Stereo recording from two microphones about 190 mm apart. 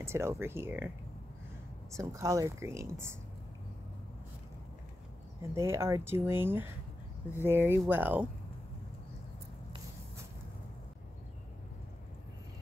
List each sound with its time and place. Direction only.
0.0 s speech: 15° right (ahead or behind)
5.4 s speech: 15° right (ahead or behind)